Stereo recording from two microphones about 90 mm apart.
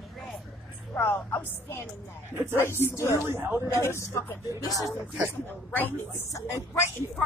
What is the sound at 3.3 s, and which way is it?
Speech, 25° right (ahead or behind).